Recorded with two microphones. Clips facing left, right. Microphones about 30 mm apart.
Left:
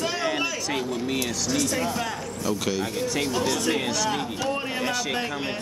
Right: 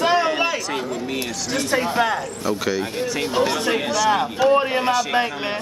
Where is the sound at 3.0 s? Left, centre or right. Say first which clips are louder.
Right 2 dB; centre.